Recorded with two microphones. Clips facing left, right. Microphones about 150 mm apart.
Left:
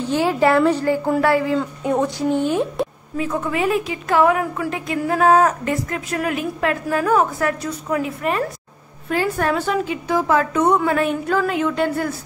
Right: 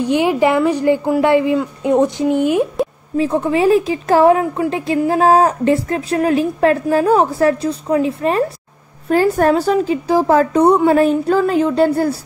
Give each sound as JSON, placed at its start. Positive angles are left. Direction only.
{"t": 0.0, "sound": "a woman's voice", "side_deg": -15}
{"t": 3.2, "sound": "a woman's voice", "side_deg": -30}
{"t": 9.1, "sound": "a woman's voice", "side_deg": -40}